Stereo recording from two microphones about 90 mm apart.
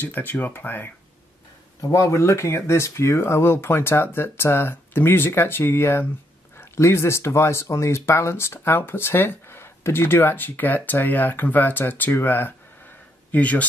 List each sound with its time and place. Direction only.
0.0 s speech: 20° left (ahead or behind)
1.8 s speech: 35° left (ahead or behind); by 13.7 s 15° left (ahead or behind)